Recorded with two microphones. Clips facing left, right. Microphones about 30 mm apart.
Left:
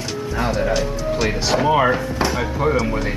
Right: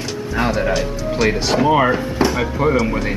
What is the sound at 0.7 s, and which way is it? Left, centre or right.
Speech, centre.